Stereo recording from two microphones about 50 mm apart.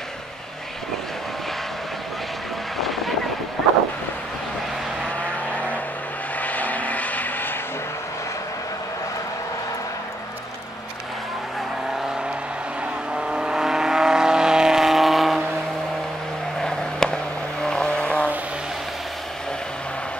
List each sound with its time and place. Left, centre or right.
2.8 s vehicle: centre
6.4 s vehicle: left
13.1 s vehicle: centre
16.6 s vehicle: centre